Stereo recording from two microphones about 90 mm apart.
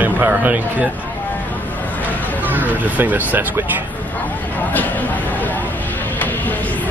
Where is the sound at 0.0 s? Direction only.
20° right (ahead or behind).